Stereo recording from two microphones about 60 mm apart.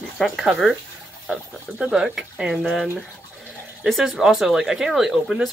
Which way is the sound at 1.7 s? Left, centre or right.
Centre.